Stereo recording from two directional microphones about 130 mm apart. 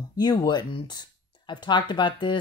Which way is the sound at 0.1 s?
30° left (ahead or behind).